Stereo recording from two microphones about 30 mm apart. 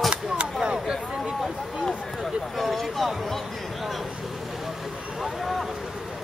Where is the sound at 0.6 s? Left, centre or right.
Right.